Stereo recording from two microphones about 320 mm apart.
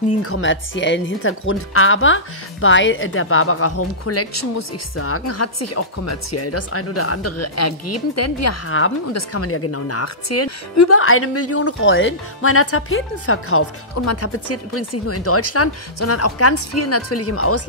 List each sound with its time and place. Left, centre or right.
0.2 s a woman's voice: left